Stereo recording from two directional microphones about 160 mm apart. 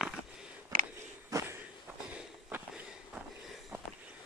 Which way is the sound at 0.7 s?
60° right (ahead or behind).